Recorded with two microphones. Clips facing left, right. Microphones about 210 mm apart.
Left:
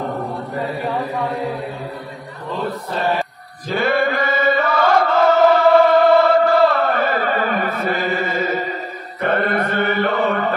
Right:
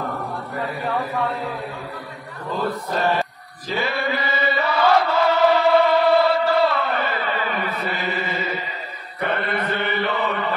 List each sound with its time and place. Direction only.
3.6 s chant: 55° left (ahead or behind)